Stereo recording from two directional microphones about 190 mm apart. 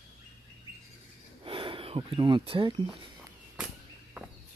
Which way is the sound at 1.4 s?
30° right (ahead or behind).